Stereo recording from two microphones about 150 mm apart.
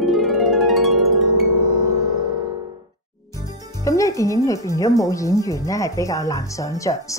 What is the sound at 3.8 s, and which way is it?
A woman's voice, 20° left (ahead or behind).